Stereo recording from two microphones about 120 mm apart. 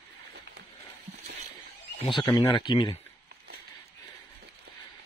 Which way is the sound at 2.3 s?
35° left (ahead or behind).